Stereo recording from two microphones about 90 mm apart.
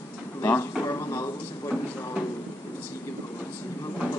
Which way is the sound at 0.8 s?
35° left (ahead or behind).